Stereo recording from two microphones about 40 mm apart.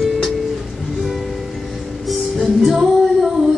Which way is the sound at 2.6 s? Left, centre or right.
Centre.